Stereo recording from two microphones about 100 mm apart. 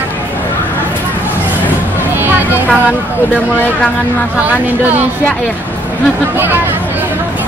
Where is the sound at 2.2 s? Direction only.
20° right (ahead or behind).